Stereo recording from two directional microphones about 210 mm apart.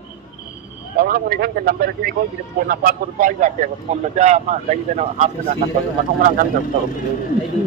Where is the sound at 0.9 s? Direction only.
45° right (ahead or behind).